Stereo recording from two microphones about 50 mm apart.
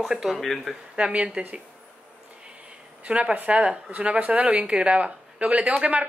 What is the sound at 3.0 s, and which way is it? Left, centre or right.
Speech, right.